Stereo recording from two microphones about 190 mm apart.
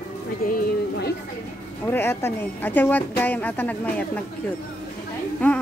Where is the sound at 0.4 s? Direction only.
50° left (ahead or behind).